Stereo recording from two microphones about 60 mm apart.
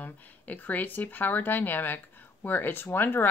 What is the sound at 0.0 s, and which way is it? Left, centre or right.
Speech, left.